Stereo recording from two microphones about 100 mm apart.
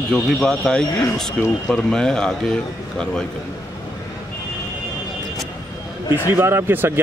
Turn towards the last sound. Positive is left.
turn(degrees=-20)  # may be behind; listen again after turning